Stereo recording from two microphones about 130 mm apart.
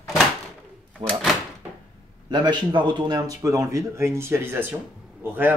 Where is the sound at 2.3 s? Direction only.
35° right (ahead or behind); by 4.8 s 15° right (ahead or behind).